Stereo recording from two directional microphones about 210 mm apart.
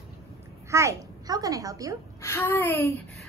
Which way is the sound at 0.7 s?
15° right (ahead or behind).